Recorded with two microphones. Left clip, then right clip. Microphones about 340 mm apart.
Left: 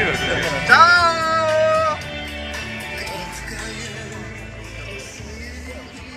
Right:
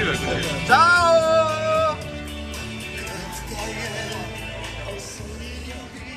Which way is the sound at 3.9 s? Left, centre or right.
Right.